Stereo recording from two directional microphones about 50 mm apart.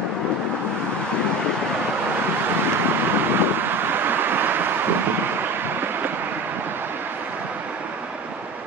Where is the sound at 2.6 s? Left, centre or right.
Right.